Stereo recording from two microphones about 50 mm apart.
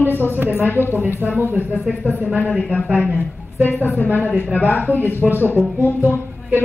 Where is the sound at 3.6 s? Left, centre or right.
Left.